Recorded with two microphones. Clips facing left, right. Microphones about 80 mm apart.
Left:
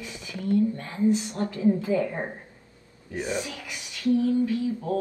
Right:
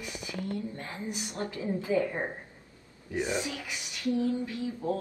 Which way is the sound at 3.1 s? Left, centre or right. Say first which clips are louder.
Left 1 dB; right.